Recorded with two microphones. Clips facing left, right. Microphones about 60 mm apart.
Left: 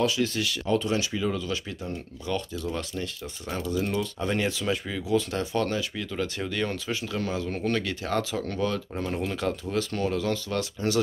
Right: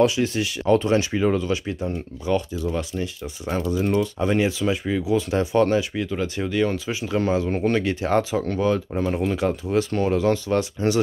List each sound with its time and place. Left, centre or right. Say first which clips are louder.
0.0 s speech: right 6 dB; right
0.7 s speech: right 5 dB; right
1.5 s speech: right 7 dB; right
1.9 s speech: right 7 dB; centre
7.1 s speech: right 11 dB; right